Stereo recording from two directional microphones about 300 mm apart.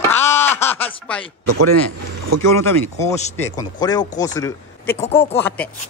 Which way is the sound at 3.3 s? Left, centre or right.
Centre.